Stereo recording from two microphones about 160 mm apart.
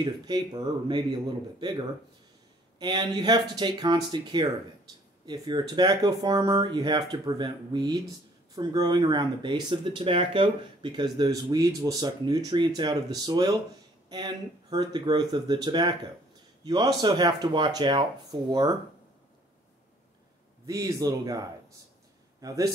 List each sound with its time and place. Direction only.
0.0 s speech: 25° right (ahead or behind)
20.6 s speech: 25° right (ahead or behind)